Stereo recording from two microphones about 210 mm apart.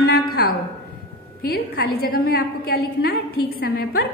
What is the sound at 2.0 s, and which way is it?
A woman's voice, 45° left (ahead or behind).